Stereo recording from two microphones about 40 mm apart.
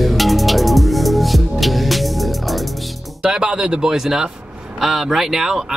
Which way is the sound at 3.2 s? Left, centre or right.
Centre.